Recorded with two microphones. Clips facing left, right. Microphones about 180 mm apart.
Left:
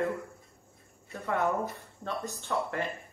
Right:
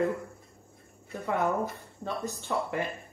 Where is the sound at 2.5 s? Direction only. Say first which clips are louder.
Even; 10° right (ahead or behind).